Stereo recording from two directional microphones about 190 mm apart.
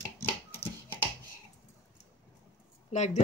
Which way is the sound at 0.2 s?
10° left (ahead or behind).